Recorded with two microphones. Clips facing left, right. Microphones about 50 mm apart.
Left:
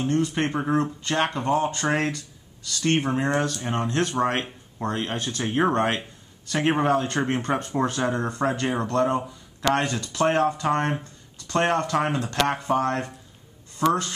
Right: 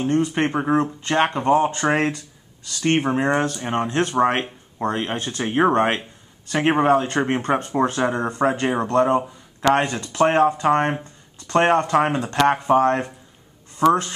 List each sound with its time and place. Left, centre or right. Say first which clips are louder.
0.0 s speech: right 3 dB; right